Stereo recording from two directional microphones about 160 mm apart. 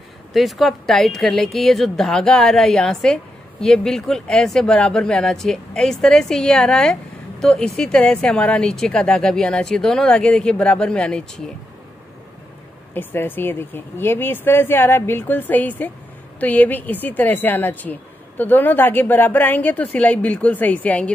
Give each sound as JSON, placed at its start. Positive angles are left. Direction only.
{"t": 0.3, "sound": "speech", "side_deg": 0}
{"t": 12.9, "sound": "speech", "side_deg": 10}